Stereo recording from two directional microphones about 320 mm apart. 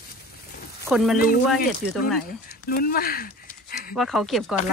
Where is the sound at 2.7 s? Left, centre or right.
Left.